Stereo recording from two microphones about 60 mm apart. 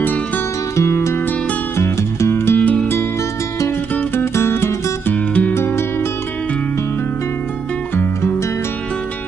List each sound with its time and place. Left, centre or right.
0.7 s music: left
4.1 s music: left
5.1 s music: left
5.5 s music: left
7.9 s music: left